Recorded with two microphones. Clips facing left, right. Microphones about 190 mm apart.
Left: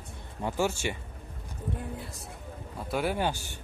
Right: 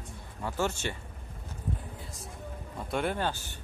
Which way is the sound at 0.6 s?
10° left (ahead or behind).